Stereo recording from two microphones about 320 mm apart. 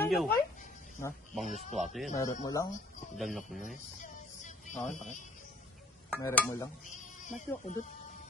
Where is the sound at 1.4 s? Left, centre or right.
Left.